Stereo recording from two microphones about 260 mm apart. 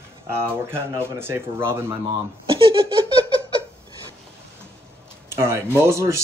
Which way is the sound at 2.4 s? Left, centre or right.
Centre.